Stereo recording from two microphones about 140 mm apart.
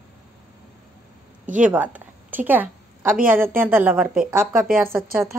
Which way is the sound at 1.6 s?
10° right (ahead or behind).